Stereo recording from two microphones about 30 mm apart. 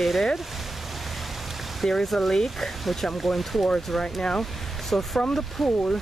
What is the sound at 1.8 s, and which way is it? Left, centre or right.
Speech, centre.